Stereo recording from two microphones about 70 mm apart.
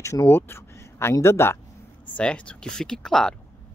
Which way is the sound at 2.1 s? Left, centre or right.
Centre.